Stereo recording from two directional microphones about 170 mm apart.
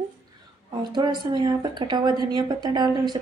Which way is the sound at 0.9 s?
25° right (ahead or behind).